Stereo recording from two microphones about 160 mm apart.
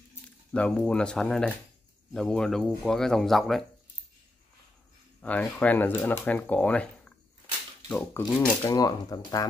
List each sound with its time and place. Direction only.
0.5 s speech: 5° left (ahead or behind)
5.2 s speech: 10° left (ahead or behind)